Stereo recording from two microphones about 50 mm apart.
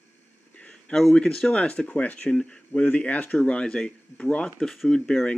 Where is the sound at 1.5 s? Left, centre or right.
Left; by 4.9 s centre.